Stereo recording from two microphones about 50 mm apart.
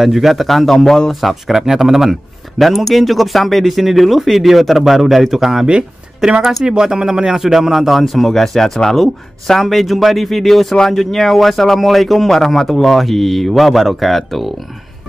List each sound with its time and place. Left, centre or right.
0.0 s speech: centre
1.3 s speech: centre
5.7 s speech: centre